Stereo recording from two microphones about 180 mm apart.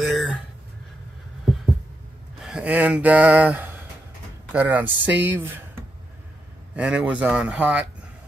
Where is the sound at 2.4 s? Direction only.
5° right (ahead or behind).